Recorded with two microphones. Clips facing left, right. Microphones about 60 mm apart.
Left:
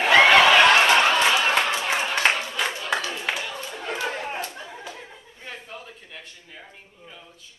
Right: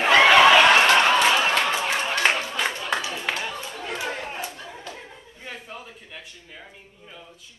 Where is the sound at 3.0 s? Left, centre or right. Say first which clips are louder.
Even; centre.